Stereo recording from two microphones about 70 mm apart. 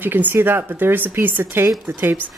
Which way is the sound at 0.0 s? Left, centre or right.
Right.